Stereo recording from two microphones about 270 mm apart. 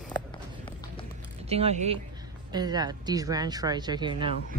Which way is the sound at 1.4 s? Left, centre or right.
Right.